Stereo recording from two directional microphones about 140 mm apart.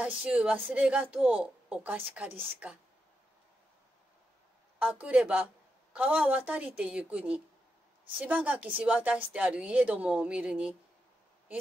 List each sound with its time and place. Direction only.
0.0 s speech: 10° right (ahead or behind)
4.7 s speech: 10° right (ahead or behind)